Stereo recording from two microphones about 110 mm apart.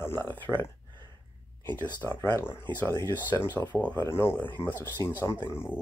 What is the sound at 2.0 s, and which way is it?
Speech, 20° left (ahead or behind).